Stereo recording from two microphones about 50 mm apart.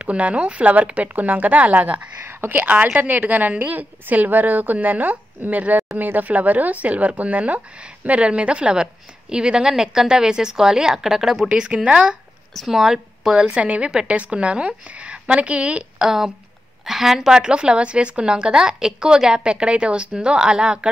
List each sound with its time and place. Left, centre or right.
0.0 s a woman's voice: right; by 11.4 s centre
11.4 s a woman's voice: centre
12.5 s a woman's voice: centre
13.5 s a woman's voice: right
16.0 s a woman's voice: centre